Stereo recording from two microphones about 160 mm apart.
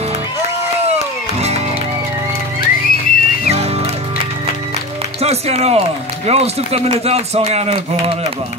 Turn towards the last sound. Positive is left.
turn(degrees=-40)  # may be behind; listen again after turning